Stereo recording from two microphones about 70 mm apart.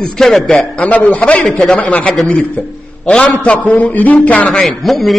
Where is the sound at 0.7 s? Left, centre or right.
Left.